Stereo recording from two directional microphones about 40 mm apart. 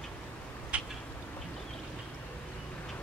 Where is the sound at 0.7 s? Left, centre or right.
Right.